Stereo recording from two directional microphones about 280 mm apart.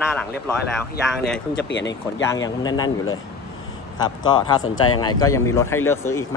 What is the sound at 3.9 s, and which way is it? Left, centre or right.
A man's voice, centre.